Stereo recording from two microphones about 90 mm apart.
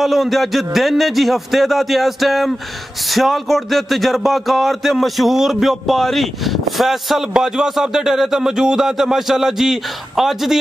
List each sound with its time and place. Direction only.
0.0 s speech: centre (ahead or behind)